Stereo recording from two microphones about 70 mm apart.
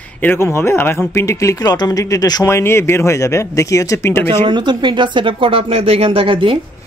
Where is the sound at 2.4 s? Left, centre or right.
Left.